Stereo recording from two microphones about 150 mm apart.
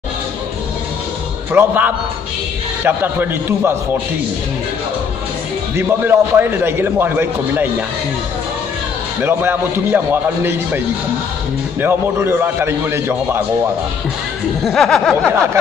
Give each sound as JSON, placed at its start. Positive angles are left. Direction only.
{"t": 1.5, "sound": "a man's voice", "side_deg": -15}
{"t": 5.8, "sound": "a man's voice", "side_deg": -15}
{"t": 9.2, "sound": "a man's voice", "side_deg": -15}
{"t": 11.8, "sound": "a man's voice", "side_deg": -15}
{"t": 14.6, "sound": "a sound", "side_deg": 5}